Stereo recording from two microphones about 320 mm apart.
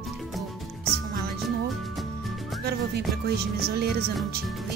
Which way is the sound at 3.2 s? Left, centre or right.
Right.